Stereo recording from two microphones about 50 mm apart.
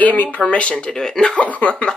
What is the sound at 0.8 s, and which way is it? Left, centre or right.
Speech, centre.